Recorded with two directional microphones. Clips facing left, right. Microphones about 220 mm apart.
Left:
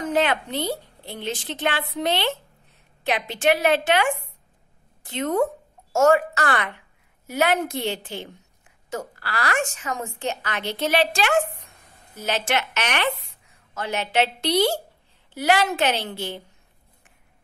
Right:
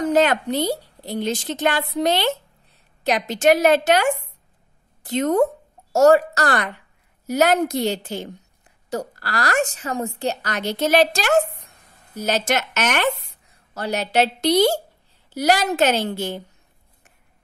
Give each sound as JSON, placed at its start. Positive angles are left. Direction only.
{"t": 0.0, "sound": "a woman's voice", "side_deg": -40}